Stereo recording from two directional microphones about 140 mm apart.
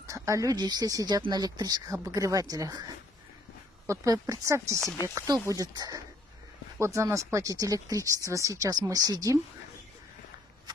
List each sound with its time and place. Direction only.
0.0 s speech: 20° right (ahead or behind)